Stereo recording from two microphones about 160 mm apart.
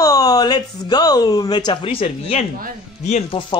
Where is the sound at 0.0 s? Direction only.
25° left (ahead or behind).